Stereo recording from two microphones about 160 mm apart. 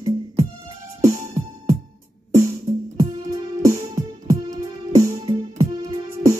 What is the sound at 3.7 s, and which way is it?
Music, 20° right (ahead or behind).